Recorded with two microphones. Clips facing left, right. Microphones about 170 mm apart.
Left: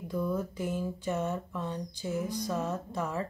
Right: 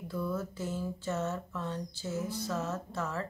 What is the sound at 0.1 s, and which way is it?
A woman's voice, 15° left (ahead or behind).